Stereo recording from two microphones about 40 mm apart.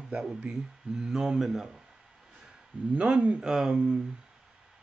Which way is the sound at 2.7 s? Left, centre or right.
Right.